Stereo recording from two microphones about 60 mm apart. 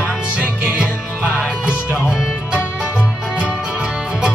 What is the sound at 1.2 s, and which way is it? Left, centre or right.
Music, right.